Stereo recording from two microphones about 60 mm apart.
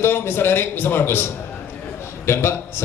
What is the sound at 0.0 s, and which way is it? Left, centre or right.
A man's voice, left.